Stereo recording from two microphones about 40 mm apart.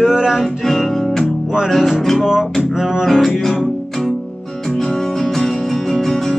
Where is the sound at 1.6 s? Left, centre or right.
Centre.